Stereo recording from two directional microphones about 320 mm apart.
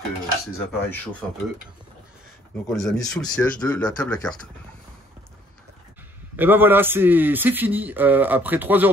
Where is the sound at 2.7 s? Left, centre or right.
Centre.